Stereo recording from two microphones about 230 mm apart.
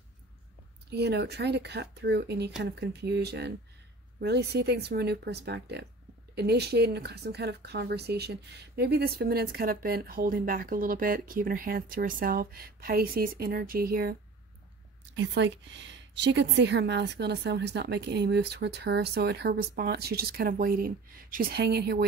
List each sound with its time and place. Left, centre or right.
0.8 s a woman's voice: right
15.1 s a woman's voice: right